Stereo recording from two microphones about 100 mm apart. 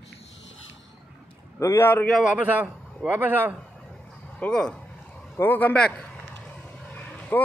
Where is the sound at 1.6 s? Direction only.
25° left (ahead or behind).